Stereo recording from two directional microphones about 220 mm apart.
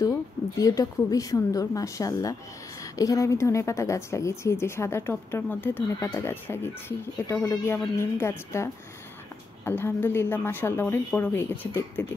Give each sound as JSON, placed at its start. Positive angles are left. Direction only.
{"t": 0.6, "sound": "a woman's voice", "side_deg": 15}
{"t": 9.7, "sound": "a woman's voice", "side_deg": 10}